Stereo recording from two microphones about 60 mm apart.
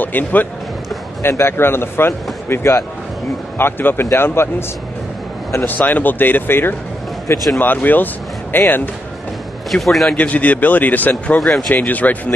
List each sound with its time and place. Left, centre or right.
0.0 s speech: left
1.2 s a man's voice: left
3.5 s a man's voice: left
5.6 s a man's voice: left
9.7 s a man's voice: centre
10.1 s speech: left
11.3 s a man's voice: centre
11.7 s speech: left